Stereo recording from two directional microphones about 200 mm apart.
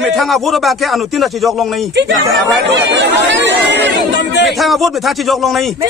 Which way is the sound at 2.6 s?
60° right (ahead or behind).